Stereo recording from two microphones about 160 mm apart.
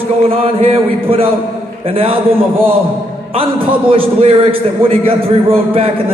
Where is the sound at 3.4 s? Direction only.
35° right (ahead or behind).